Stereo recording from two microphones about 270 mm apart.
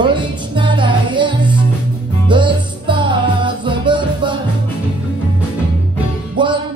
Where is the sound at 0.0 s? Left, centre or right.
Centre.